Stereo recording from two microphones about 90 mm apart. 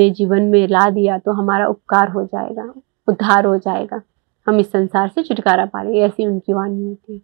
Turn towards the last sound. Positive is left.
turn(degrees=-25)  # may be behind; listen again after turning